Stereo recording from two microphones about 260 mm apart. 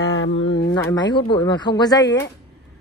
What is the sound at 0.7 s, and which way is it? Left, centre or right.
Speech, centre.